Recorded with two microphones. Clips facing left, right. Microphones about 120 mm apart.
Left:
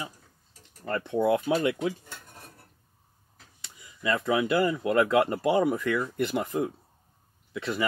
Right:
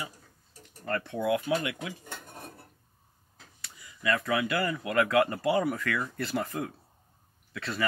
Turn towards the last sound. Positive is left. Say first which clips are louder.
# left 3 dB
turn(degrees=20)  # may be behind; listen again after turning